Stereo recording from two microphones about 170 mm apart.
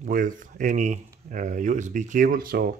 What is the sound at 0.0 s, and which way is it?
Speech, 50° right (ahead or behind).